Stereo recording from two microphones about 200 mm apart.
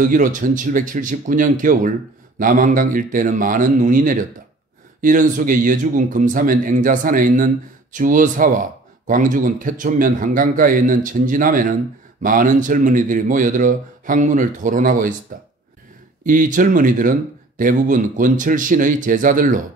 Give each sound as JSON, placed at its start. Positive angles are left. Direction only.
{"t": 0.0, "sound": "speech", "side_deg": -40}
{"t": 16.3, "sound": "speech", "side_deg": -40}